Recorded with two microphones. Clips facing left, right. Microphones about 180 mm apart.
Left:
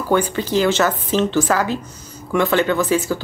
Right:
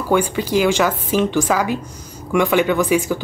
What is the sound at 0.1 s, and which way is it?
Speech, 10° right (ahead or behind).